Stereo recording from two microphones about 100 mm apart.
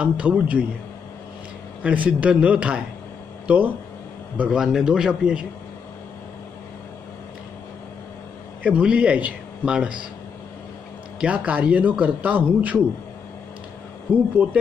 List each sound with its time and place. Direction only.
0.0 s a man's voice: 10° right (ahead or behind)
1.8 s a man's voice: 10° right (ahead or behind)
8.6 s a man's voice: 10° right (ahead or behind)
11.1 s a man's voice: 10° right (ahead or behind)
14.1 s a man's voice: 15° right (ahead or behind)